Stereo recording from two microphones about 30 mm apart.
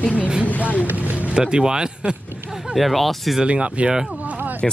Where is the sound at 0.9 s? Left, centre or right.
Right.